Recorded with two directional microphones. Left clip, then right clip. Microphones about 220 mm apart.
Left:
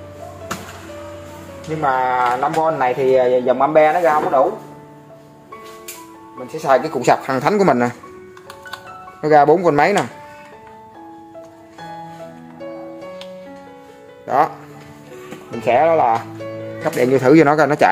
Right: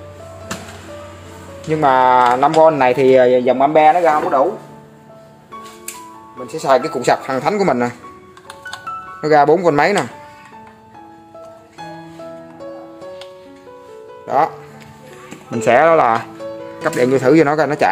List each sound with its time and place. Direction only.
1.8 s speech: 40° right (ahead or behind)
3.4 s speech: 15° right (ahead or behind)
6.4 s speech: 10° right (ahead or behind)
7.0 s speech: 15° left (ahead or behind)
9.2 s speech: centre (ahead or behind)
14.2 s music: 5° left (ahead or behind)
15.6 s speech: 20° right (ahead or behind)
16.9 s speech: centre (ahead or behind)